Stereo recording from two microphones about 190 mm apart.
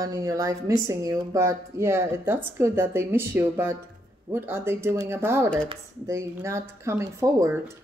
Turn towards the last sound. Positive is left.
turn(degrees=-15)  # may be behind; listen again after turning